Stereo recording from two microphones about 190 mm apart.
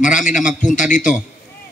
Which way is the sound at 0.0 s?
40° left (ahead or behind).